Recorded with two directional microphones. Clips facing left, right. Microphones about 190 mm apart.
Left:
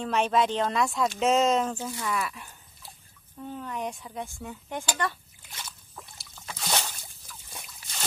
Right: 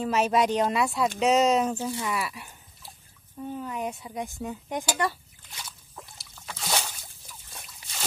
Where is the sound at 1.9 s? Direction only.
15° right (ahead or behind).